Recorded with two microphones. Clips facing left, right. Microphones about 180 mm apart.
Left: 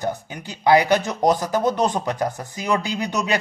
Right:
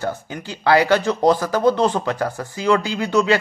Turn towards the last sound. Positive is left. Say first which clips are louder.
# right 5 dB
turn(degrees=20)  # may be behind; listen again after turning